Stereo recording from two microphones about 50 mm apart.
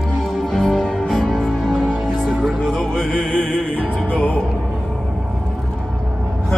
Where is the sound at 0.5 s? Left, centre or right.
Centre.